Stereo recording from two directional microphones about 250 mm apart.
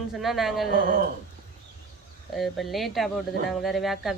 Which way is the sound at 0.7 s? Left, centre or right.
Right.